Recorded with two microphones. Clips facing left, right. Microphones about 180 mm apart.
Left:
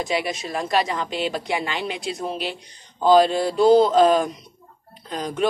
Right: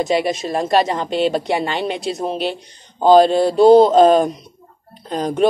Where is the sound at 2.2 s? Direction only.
30° right (ahead or behind).